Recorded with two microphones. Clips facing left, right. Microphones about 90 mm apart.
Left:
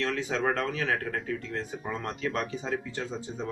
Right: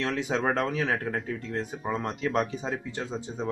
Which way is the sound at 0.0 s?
15° right (ahead or behind).